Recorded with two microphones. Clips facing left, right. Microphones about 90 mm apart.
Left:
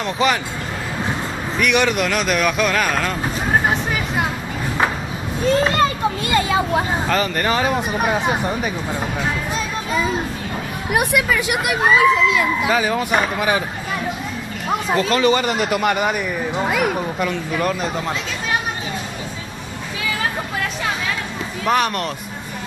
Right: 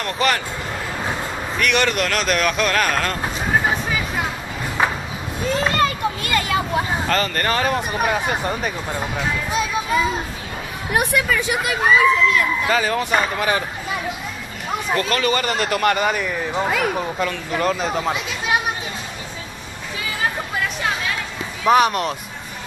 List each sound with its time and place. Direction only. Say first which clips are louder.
0.0 s speech: left 2 dB; 15° left (ahead or behind)
1.6 s speech: left 2 dB; 15° left (ahead or behind)
5.8 s children playing: left 2 dB; 25° left (ahead or behind)
7.1 s speech: left 1 dB; 10° left (ahead or behind)
9.5 s music: right 2 dB; 5° right (ahead or behind)
10.9 s speech: left 1 dB; 5° left (ahead or behind)
15.0 s speech: left 4 dB; 20° left (ahead or behind)
16.5 s speech: left 1 dB; centre (ahead or behind)
21.6 s speech: right 4 dB; 5° right (ahead or behind)